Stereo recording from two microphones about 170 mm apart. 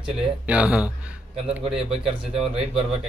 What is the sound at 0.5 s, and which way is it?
Speech, 5° right (ahead or behind).